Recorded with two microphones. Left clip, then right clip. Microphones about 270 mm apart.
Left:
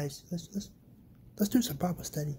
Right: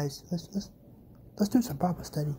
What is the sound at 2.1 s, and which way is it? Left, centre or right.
Speech, centre.